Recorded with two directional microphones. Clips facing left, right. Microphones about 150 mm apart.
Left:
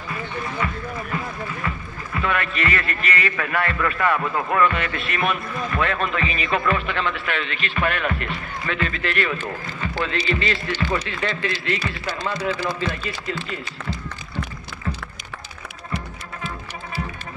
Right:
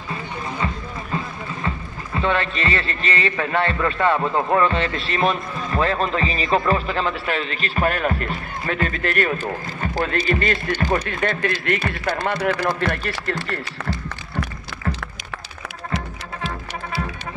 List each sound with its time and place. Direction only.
2.1 s a man's voice: 25° right (ahead or behind); by 13.2 s 65° right (ahead or behind)